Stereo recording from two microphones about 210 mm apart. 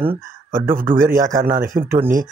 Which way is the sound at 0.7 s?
40° right (ahead or behind).